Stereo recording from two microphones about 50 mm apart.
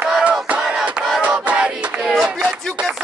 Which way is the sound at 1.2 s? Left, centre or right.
Right.